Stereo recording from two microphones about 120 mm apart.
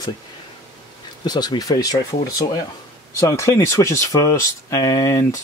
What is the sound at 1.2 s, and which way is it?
Speech, 35° left (ahead or behind).